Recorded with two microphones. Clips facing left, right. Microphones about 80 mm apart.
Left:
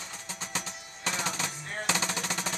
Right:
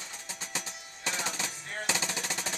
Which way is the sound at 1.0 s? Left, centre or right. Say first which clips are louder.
Left 2 dB; left.